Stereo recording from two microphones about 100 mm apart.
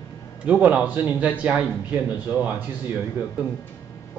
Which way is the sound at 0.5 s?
15° right (ahead or behind).